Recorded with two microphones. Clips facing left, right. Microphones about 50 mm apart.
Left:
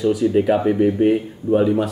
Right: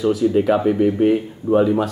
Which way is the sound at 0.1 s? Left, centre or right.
Centre.